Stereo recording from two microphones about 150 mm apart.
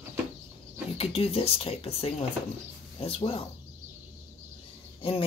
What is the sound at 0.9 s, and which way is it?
Speech, 40° left (ahead or behind).